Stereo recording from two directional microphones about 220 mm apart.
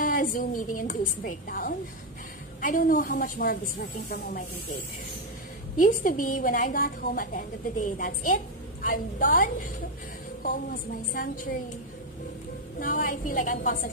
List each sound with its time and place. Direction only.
0.0 s a sound: 40° left (ahead or behind)
0.7 s a woman's voice: 35° left (ahead or behind)
5.8 s a woman's voice: 40° left (ahead or behind)
12.7 s a woman's voice: 40° left (ahead or behind)